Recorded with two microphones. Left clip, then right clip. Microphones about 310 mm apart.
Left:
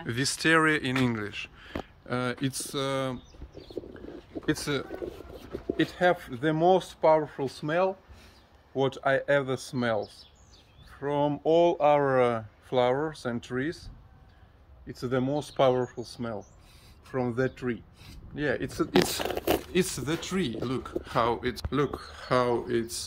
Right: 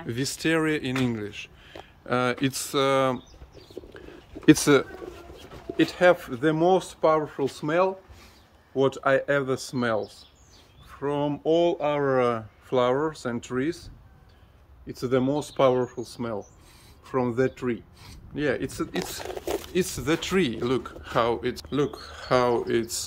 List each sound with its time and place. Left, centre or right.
0.0 s speech: centre
4.7 s speech: centre
5.8 s speech: centre
14.9 s speech: centre
20.1 s speech: centre